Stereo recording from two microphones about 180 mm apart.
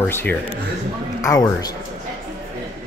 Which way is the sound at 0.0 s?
10° left (ahead or behind).